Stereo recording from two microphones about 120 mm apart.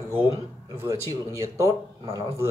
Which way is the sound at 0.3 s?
30° right (ahead or behind).